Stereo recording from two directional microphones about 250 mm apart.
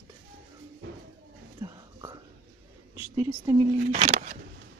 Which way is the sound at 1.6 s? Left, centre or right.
Centre.